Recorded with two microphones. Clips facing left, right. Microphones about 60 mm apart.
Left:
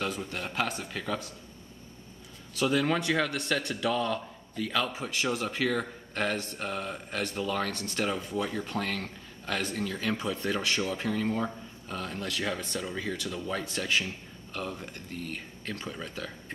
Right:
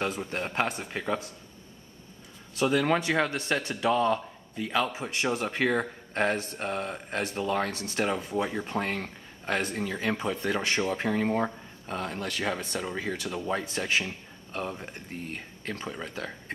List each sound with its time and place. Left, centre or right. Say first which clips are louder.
0.4 s speech: right 3 dB; right
2.5 s speech: right 2 dB; right
5.3 s speech: right 3 dB; right; by 16.1 s centre